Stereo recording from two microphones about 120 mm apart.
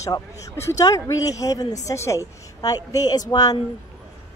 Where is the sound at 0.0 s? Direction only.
25° left (ahead or behind).